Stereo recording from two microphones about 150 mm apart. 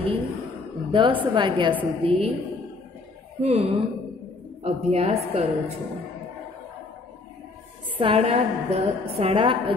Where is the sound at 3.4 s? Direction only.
45° right (ahead or behind).